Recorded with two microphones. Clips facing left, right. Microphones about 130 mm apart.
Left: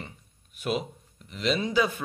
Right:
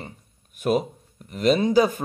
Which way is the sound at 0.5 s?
45° right (ahead or behind).